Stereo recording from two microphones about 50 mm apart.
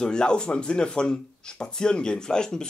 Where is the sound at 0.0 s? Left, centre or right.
Centre.